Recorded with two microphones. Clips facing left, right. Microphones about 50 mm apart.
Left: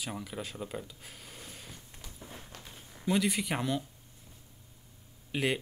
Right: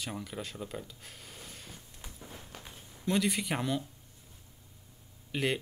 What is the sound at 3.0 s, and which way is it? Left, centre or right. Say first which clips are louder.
Speech: left 1 dB; centre.